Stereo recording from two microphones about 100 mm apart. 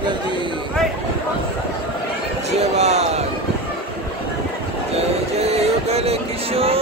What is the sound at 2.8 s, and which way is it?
Speech, 90° right.